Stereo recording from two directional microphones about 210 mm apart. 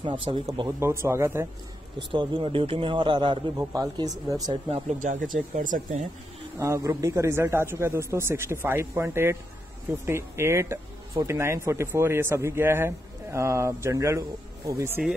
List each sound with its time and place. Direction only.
0.0 s speech: 20° right (ahead or behind)
2.0 s a man's voice: 25° right (ahead or behind)
4.9 s speech: 40° right (ahead or behind)
6.6 s speech: 15° right (ahead or behind)